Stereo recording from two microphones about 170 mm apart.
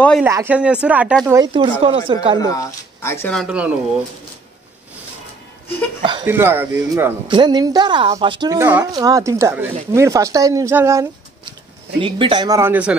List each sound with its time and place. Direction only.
0.2 s speech: 10° right (ahead or behind)
1.4 s speech: 30° right (ahead or behind)
2.3 s speech: 20° left (ahead or behind)
3.3 s speech: 5° right (ahead or behind)
6.2 s speech: 15° right (ahead or behind)
7.2 s speech: 25° right (ahead or behind)
8.5 s speech: 10° right (ahead or behind)
12.0 s speech: 30° right (ahead or behind); by 12.9 s 10° right (ahead or behind)